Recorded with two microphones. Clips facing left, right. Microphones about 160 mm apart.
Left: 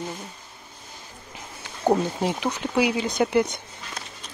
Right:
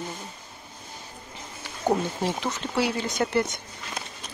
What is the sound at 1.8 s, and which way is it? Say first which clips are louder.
Speech: left 3 dB; 15° left (ahead or behind).